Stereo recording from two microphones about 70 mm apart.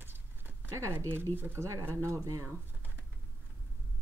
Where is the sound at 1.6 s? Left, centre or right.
Right.